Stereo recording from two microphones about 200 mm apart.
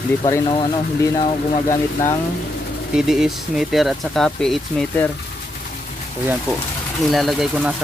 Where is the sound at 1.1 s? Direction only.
30° left (ahead or behind).